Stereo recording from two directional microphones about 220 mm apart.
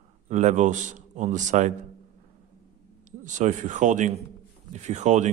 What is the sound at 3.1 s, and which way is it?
A man's voice, 35° right (ahead or behind).